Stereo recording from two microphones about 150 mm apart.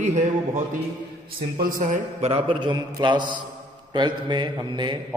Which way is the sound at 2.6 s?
30° right (ahead or behind).